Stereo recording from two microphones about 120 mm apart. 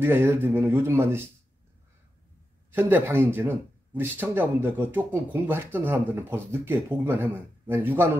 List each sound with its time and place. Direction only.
0.0 s speech: 20° right (ahead or behind)
2.7 s speech: 20° right (ahead or behind)